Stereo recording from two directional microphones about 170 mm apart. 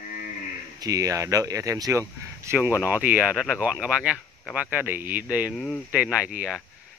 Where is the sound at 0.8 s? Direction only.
20° right (ahead or behind).